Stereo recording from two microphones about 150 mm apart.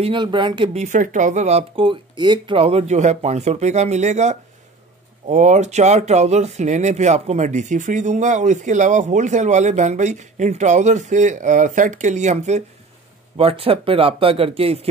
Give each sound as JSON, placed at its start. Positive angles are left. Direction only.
{"t": 0.0, "sound": "speech", "side_deg": -35}
{"t": 0.7, "sound": "speech", "side_deg": -55}
{"t": 13.4, "sound": "speech", "side_deg": -40}